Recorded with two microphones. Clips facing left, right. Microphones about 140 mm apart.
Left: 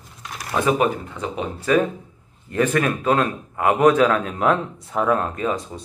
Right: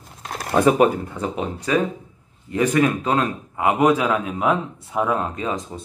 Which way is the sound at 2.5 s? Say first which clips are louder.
Right 1 dB; 15° right (ahead or behind).